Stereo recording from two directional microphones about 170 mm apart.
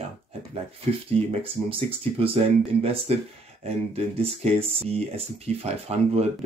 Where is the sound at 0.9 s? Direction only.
35° right (ahead or behind).